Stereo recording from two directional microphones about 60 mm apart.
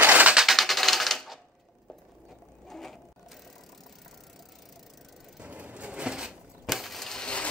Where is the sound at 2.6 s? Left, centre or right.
Centre.